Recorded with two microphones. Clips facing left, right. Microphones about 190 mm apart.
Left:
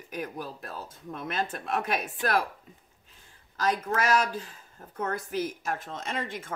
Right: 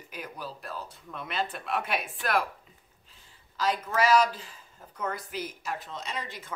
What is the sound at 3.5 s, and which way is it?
Speech, 50° left (ahead or behind).